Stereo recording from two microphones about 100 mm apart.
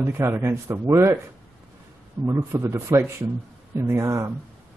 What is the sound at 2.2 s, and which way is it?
Speech, 25° right (ahead or behind).